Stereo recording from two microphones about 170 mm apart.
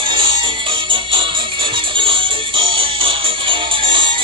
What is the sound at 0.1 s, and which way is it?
Music, 30° right (ahead or behind).